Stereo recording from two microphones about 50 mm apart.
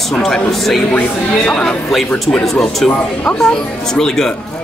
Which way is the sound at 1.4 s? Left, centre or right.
Left.